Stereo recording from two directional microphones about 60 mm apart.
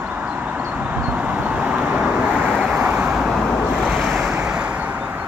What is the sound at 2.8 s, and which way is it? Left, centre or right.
Vehicle, right.